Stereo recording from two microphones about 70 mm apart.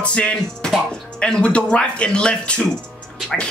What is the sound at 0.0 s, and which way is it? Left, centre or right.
Speech, centre.